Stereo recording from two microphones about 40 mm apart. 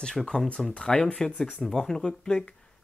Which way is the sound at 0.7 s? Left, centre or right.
Left.